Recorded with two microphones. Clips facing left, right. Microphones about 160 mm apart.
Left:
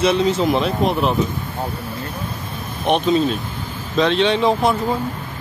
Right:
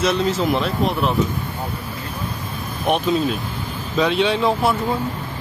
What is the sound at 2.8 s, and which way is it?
Speech, centre (ahead or behind).